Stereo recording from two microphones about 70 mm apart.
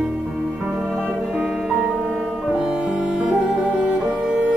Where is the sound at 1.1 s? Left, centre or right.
Centre.